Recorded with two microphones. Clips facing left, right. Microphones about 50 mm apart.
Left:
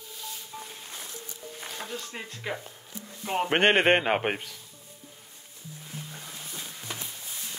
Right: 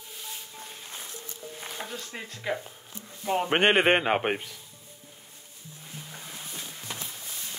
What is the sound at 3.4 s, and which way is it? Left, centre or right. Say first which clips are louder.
Speech: left 1 dB; centre.